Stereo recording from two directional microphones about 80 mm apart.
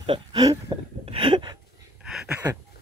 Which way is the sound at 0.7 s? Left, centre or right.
Right.